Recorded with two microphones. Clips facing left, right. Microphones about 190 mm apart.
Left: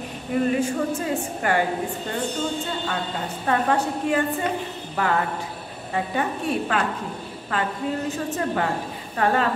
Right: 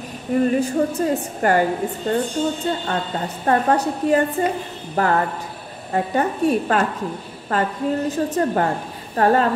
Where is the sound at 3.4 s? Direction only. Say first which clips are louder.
Right 4 dB; 40° right (ahead or behind).